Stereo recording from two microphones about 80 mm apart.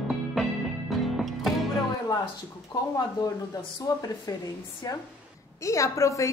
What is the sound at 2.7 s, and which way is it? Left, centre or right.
A woman's voice, left.